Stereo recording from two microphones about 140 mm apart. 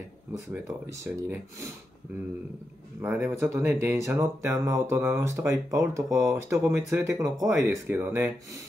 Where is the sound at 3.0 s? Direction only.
15° right (ahead or behind).